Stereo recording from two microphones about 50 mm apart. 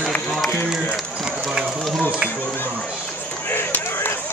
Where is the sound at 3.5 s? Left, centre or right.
Left.